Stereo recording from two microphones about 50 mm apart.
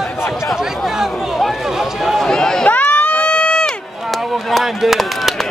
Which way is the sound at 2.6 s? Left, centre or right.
Left.